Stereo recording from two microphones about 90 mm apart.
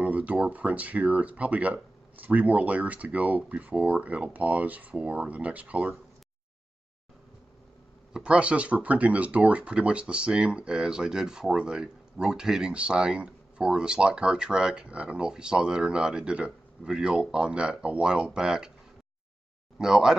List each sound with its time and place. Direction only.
0.0 s speech: 15° right (ahead or behind)
8.1 s speech: 10° right (ahead or behind)
19.8 s speech: 5° right (ahead or behind)